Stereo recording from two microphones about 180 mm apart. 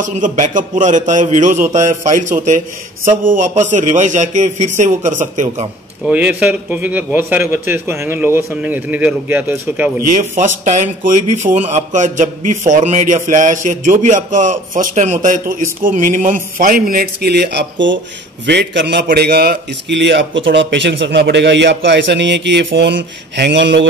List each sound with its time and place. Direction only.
0.0 s a man's voice: 45° right (ahead or behind)
6.0 s speech: 5° right (ahead or behind)
10.1 s a man's voice: 45° right (ahead or behind); by 19.0 s 75° right (ahead or behind)
19.0 s a man's voice: 60° right (ahead or behind); by 23.9 s 80° right